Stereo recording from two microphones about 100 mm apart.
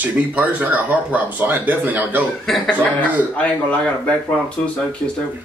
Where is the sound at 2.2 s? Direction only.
Centre (ahead or behind).